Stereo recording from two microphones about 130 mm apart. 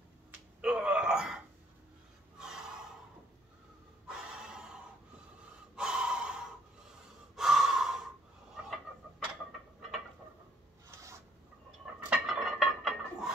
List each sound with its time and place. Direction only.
0.6 s a sound: 5° right (ahead or behind)
2.3 s gasp: 5° right (ahead or behind)
4.4 s snort: 5° right (ahead or behind)
5.8 s gasp: 5° right (ahead or behind)
8.6 s chicken: 5° right (ahead or behind)
9.8 s a sound: centre (ahead or behind)
10.9 s filing: 25° right (ahead or behind)
12.1 s dishes: centre (ahead or behind)